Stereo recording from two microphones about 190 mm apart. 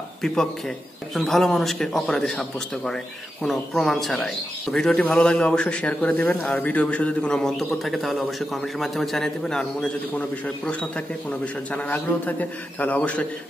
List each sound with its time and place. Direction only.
1.1 s a man's voice: centre (ahead or behind)